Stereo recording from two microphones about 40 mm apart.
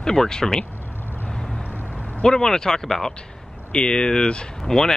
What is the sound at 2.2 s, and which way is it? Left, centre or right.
Speech, centre.